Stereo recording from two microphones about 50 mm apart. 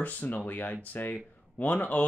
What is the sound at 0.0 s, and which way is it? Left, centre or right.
Speech, left.